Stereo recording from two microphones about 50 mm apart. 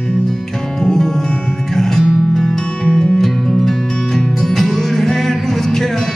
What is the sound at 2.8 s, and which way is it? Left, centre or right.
Music, centre.